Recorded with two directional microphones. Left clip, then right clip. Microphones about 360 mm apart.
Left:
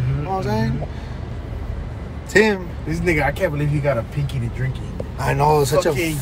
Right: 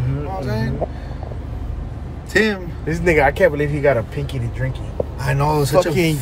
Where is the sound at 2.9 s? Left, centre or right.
Right.